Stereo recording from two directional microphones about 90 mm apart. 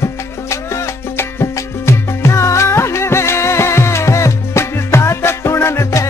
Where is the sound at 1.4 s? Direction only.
30° left (ahead or behind).